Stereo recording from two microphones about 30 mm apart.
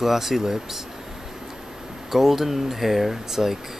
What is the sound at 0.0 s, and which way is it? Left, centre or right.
Speech, centre.